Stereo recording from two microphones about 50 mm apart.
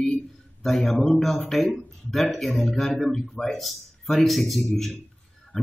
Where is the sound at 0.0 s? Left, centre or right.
Centre.